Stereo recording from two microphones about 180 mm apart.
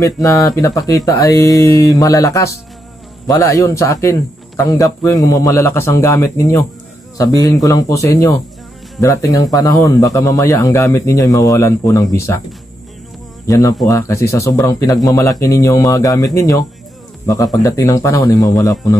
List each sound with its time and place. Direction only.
0.0 s a man's voice: 20° left (ahead or behind)
13.5 s a man's voice: 20° left (ahead or behind)